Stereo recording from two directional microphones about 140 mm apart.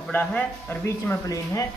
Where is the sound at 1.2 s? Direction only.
25° left (ahead or behind).